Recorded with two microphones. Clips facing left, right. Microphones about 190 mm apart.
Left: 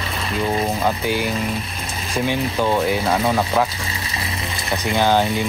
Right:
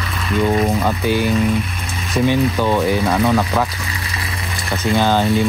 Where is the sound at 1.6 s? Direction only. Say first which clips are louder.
Right 2 dB; 30° left (ahead or behind).